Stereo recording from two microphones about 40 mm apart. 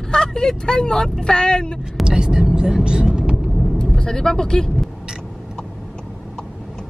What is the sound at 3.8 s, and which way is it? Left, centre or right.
Speech, centre.